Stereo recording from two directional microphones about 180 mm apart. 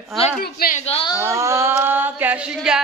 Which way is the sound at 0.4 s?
55° left (ahead or behind).